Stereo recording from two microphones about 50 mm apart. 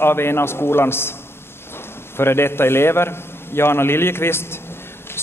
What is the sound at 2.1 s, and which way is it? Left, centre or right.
A man's voice, left.